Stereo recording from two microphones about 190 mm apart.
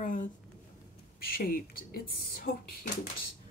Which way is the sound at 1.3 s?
50° left (ahead or behind).